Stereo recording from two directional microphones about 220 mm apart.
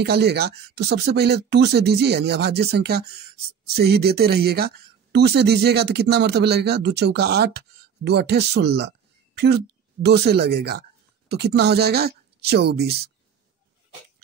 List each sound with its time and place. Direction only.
0.0 s speech: 50° right (ahead or behind)
10.0 s a woman's voice: 50° right (ahead or behind)